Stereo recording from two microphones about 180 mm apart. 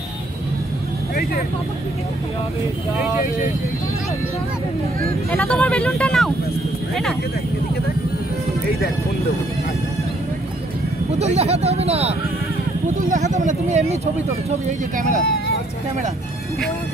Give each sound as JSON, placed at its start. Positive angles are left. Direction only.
{"t": 5.3, "sound": "speech", "side_deg": 5}
{"t": 11.1, "sound": "speech", "side_deg": -35}
{"t": 13.1, "sound": "speech", "side_deg": -45}